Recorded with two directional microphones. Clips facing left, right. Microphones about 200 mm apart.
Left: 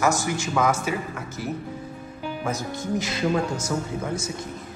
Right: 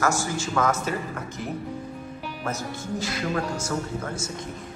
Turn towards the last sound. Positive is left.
turn(degrees=20)  # may be behind; listen again after turning